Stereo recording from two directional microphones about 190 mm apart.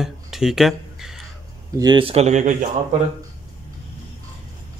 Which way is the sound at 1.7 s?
20° right (ahead or behind).